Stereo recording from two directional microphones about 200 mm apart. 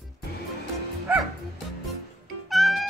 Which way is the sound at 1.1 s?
10° right (ahead or behind).